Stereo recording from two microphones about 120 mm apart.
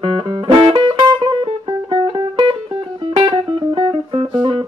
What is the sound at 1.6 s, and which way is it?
Music, 45° right (ahead or behind).